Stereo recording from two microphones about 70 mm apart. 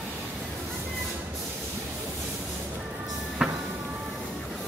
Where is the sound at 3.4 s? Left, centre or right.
Centre.